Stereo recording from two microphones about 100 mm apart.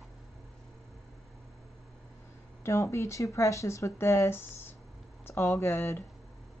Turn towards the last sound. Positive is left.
turn(degrees=25)  # may be behind; listen again after turning